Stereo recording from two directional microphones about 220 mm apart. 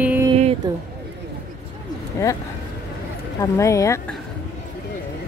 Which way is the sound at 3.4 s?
15° left (ahead or behind).